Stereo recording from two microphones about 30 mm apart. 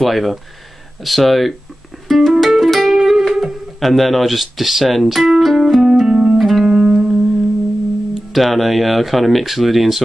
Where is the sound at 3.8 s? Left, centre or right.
Centre.